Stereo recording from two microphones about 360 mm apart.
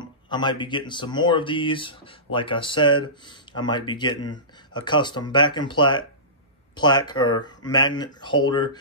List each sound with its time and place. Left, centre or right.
0.0 s speech: centre